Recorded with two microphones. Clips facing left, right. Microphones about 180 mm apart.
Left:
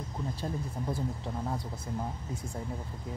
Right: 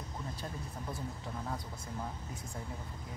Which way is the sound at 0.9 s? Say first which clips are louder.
Left 6 dB; 30° left (ahead or behind).